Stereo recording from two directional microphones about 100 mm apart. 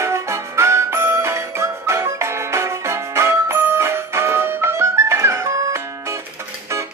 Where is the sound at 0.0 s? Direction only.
30° right (ahead or behind).